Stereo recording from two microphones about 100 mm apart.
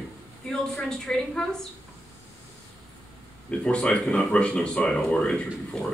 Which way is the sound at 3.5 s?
10° left (ahead or behind).